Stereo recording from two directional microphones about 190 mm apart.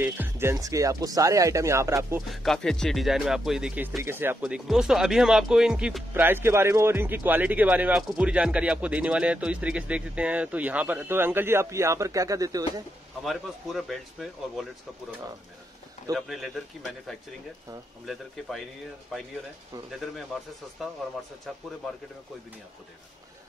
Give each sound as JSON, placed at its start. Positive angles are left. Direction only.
{"t": 0.0, "sound": "speech", "side_deg": -10}
{"t": 2.2, "sound": "speech", "side_deg": 0}
{"t": 13.2, "sound": "speech", "side_deg": 0}
{"t": 16.2, "sound": "speech", "side_deg": 0}
{"t": 21.5, "sound": "speech", "side_deg": 0}